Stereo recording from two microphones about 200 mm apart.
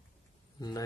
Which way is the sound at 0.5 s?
20° left (ahead or behind).